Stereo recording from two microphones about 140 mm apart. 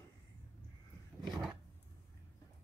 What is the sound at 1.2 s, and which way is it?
Roar, centre (ahead or behind).